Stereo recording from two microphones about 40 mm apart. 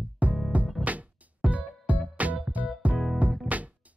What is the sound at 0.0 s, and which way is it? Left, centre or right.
Music, right.